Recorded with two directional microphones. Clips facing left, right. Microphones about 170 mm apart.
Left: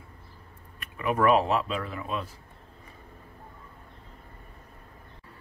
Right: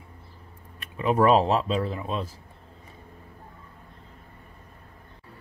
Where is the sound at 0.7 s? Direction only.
25° right (ahead or behind).